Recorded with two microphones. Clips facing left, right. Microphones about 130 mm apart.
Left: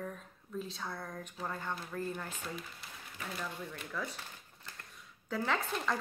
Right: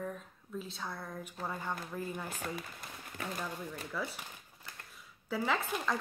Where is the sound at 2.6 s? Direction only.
50° right (ahead or behind).